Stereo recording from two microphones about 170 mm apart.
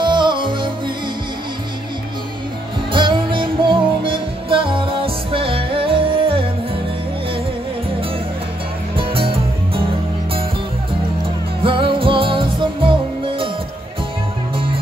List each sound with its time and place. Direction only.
0.0 s music: 25° right (ahead or behind)
2.9 s music: 30° right (ahead or behind)
8.9 s music: 30° right (ahead or behind)
11.6 s music: 30° right (ahead or behind)